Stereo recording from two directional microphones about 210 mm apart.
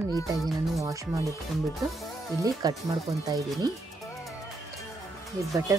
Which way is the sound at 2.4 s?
15° right (ahead or behind).